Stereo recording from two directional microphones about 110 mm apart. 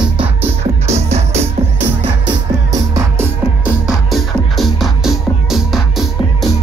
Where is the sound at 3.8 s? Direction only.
Centre (ahead or behind).